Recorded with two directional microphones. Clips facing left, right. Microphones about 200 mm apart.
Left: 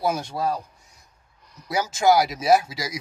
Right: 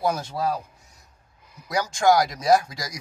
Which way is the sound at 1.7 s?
5° left (ahead or behind).